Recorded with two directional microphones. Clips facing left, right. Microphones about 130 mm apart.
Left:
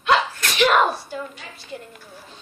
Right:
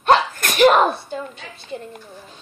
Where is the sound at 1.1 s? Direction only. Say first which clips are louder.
Right 2 dB; 25° right (ahead or behind).